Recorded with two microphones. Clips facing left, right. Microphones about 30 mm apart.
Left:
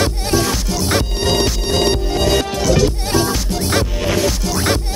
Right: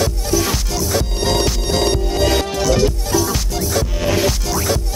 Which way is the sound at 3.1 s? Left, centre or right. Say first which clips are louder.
Left 1 dB; left.